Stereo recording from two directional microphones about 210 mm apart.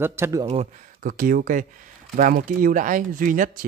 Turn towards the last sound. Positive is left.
turn(degrees=-40)  # may be behind; listen again after turning